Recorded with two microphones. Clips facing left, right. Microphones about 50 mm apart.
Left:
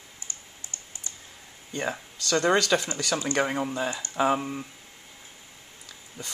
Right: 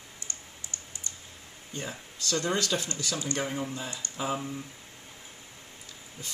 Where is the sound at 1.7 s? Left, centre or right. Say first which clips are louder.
Left 7 dB; left.